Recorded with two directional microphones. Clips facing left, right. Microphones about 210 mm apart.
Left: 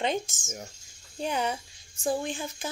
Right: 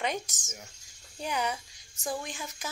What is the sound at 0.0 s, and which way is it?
Speech, 25° left (ahead or behind).